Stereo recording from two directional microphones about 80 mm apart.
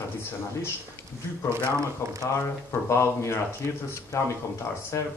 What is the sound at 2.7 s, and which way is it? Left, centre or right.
A man's voice, left.